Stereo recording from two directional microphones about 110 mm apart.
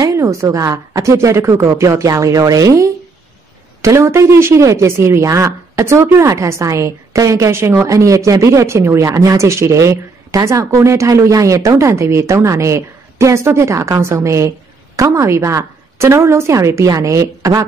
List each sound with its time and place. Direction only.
0.0 s a woman's voice: 30° right (ahead or behind)